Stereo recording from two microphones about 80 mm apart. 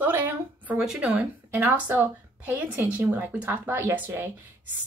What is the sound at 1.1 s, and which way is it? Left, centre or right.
A woman's voice, right.